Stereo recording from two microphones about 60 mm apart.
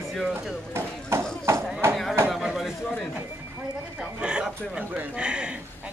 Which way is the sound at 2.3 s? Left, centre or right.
Centre.